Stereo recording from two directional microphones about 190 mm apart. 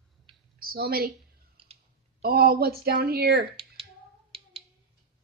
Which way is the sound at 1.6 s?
30° right (ahead or behind).